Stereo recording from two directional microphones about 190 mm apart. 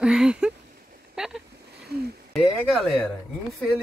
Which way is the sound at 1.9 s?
55° right (ahead or behind).